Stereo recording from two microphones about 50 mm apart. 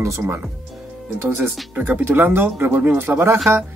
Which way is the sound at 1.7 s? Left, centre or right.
Right.